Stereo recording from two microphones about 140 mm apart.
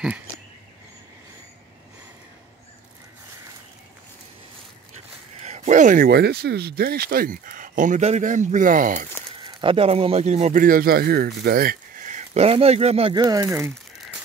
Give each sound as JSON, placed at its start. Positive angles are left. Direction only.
{"t": 4.9, "sound": "a sound", "side_deg": -55}
{"t": 6.7, "sound": "speech", "side_deg": -90}
{"t": 9.4, "sound": "speech", "side_deg": -35}
{"t": 10.6, "sound": "speech", "side_deg": -90}
{"t": 13.1, "sound": "speech", "side_deg": -30}